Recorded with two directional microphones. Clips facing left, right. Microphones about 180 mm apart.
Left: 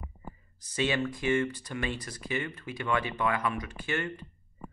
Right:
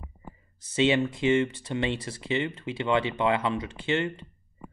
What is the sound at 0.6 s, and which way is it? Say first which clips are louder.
Speech: right 6 dB; 25° right (ahead or behind).